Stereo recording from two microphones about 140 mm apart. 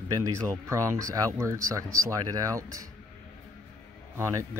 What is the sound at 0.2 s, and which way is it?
Speech, 20° right (ahead or behind).